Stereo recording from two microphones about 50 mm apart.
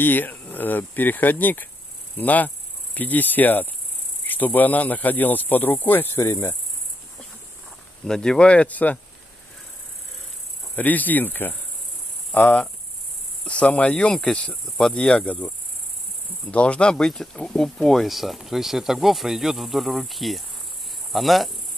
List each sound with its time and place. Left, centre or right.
0.0 s speech: left
6.2 s cricket: left
8.0 s speech: centre; by 8.9 s left
10.8 s speech: left
12.3 s cricket: left
13.4 s cricket: left
13.9 s speech: centre
16.9 s speech: centre